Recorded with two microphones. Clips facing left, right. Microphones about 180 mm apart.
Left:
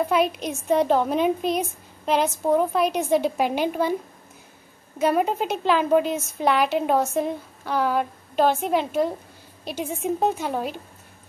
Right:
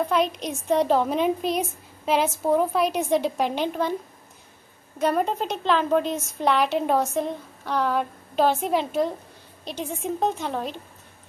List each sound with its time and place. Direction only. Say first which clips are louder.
0.0 s a woman's voice: left 2 dB; 5° left (ahead or behind)
4.9 s a woman's voice: left 2 dB; 5° left (ahead or behind)